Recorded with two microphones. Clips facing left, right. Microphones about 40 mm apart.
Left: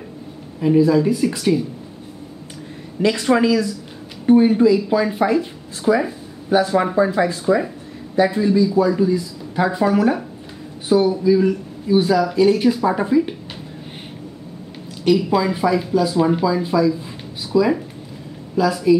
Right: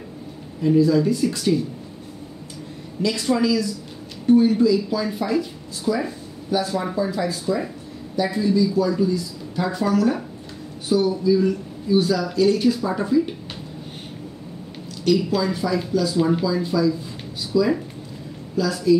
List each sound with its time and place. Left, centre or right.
0.6 s speech: left
3.0 s speech: left
15.0 s speech: centre